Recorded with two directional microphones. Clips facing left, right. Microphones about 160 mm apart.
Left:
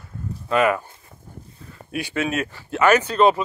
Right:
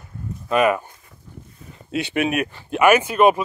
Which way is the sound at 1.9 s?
25° right (ahead or behind).